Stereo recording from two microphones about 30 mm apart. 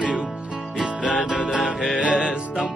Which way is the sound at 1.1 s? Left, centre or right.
Centre.